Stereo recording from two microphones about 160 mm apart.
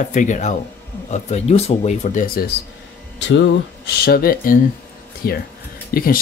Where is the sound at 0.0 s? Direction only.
50° left (ahead or behind).